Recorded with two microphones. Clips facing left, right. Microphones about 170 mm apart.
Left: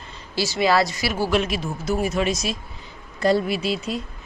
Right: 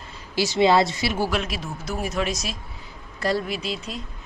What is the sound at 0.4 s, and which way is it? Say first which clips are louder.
Speech: right 2 dB; 20° right (ahead or behind).